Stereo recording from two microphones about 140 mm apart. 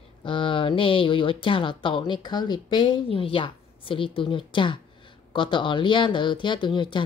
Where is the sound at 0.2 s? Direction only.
35° left (ahead or behind).